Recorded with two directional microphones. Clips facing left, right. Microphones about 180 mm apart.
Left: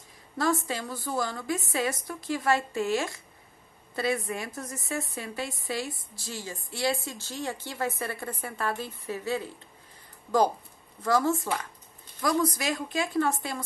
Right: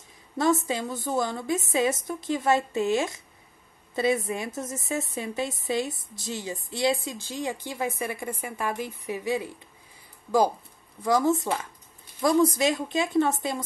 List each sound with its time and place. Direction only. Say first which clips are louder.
0.4 s a woman's voice: right 4 dB; 20° right (ahead or behind)
11.0 s a woman's voice: right 2 dB; 15° right (ahead or behind)